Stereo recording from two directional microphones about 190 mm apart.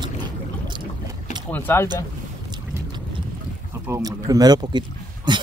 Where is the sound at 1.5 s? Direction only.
10° left (ahead or behind).